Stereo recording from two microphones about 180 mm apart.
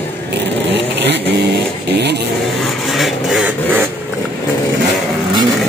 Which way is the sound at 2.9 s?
Centre (ahead or behind).